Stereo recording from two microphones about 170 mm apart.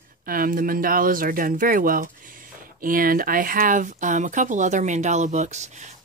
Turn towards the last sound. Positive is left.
turn(degrees=-45)  # may be behind; listen again after turning